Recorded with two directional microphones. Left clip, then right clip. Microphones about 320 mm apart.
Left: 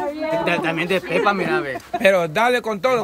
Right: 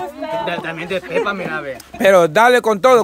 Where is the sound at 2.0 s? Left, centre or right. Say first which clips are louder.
Right 6 dB; centre.